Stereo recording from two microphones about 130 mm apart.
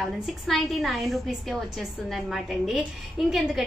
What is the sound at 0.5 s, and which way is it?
A woman's voice, centre (ahead or behind).